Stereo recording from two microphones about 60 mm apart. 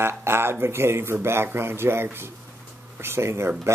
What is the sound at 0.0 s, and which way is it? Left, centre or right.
Speech, right.